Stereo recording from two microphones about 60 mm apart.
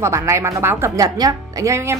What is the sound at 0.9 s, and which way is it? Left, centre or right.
Speech, right.